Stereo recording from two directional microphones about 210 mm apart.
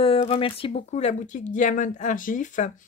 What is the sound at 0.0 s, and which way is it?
Speech, 30° left (ahead or behind).